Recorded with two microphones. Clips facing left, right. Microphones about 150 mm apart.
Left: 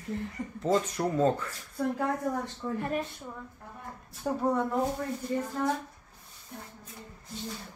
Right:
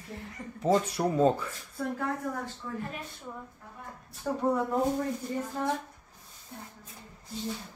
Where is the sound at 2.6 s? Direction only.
40° left (ahead or behind).